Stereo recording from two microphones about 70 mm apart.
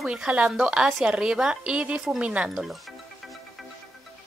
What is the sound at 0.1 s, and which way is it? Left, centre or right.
Speech, centre.